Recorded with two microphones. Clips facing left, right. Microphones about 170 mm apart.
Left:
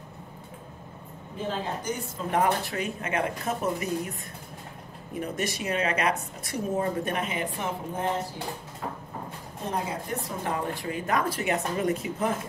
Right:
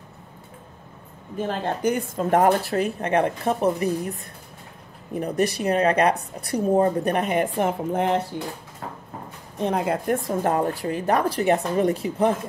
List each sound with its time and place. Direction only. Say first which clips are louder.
1.5 s speech: right 8 dB; 60° right (ahead or behind); by 4.1 s 35° right (ahead or behind)
5.2 s speech: right 8 dB; 35° right (ahead or behind)
7.2 s speech: right 9 dB; 50° right (ahead or behind); by 8.2 s 70° right (ahead or behind)
9.6 s speech: right 8 dB; 70° right (ahead or behind); by 12.3 s 35° right (ahead or behind)